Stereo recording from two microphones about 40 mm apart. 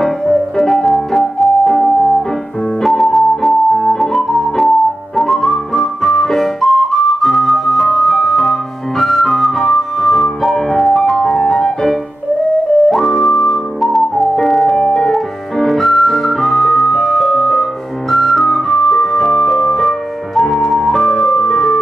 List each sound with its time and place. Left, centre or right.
0.0 s piano: centre
2.8 s keyboard: centre
12.9 s music: centre